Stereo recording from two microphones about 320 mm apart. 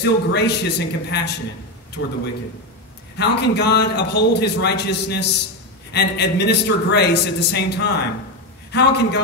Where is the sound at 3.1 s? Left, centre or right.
Left.